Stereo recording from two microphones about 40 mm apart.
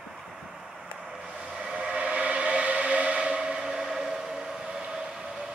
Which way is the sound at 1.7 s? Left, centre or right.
Right.